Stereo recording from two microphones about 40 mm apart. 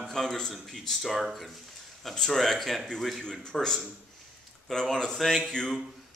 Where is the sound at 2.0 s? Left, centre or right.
Centre.